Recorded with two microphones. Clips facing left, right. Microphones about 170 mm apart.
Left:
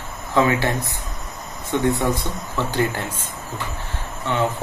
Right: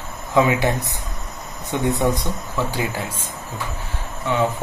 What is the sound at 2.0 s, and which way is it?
Speech, 15° right (ahead or behind).